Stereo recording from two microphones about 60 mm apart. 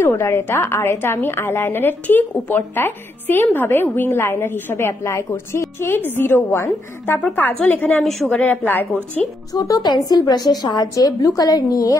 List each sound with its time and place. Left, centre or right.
0.0 s a woman's voice: left
8.0 s a woman's voice: centre
8.3 s a woman's voice: left
9.5 s a woman's voice: left